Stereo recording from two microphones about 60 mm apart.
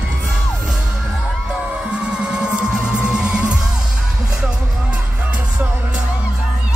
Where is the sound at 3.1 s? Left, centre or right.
Centre.